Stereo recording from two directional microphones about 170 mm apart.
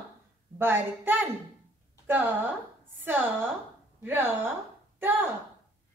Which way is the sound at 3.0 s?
10° right (ahead or behind).